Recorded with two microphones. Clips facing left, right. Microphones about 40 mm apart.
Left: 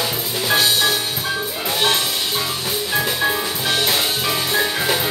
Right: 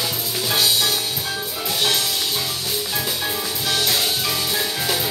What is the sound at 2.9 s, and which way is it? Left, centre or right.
Music, left.